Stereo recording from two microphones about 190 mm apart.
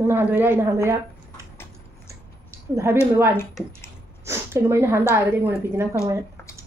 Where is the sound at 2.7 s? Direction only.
15° right (ahead or behind).